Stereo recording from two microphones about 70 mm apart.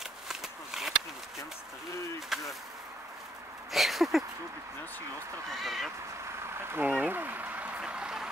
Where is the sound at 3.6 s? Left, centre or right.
Centre.